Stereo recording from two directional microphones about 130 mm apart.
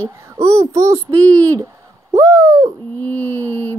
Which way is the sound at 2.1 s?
20° right (ahead or behind).